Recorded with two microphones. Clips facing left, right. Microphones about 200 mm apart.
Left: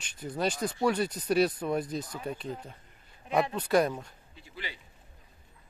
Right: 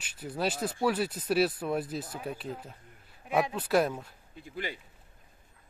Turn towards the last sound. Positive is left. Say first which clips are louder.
# right 6 dB
turn(degrees=-50)  # may be behind; listen again after turning